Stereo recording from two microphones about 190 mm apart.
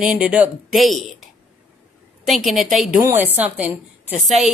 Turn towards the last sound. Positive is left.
turn(degrees=-5)  # may be behind; listen again after turning